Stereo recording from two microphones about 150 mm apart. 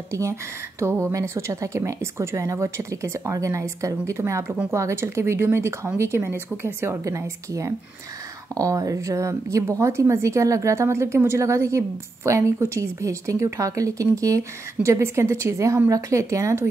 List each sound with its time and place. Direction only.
0.1 s speech: 20° right (ahead or behind)